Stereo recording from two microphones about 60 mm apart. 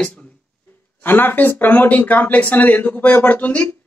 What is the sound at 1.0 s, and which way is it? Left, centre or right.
Speech, left.